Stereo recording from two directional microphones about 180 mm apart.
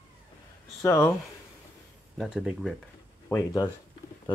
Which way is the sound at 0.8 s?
15° left (ahead or behind).